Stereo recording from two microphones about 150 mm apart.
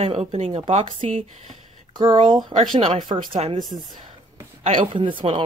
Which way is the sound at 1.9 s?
30° right (ahead or behind).